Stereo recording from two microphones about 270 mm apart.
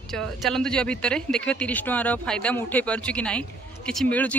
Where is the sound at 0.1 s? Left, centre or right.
Centre.